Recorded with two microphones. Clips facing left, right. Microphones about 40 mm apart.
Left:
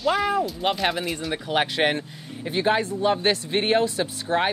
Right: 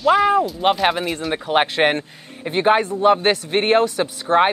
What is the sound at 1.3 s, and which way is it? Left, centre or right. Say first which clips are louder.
Speech: right 6 dB; right.